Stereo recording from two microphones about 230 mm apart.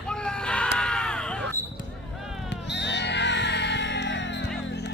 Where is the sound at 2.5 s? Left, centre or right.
Left.